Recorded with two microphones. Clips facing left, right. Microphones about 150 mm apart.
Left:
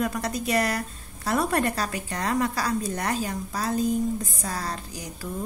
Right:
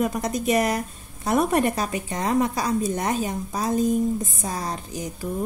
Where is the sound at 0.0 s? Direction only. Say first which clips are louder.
Right 4 dB; 20° right (ahead or behind).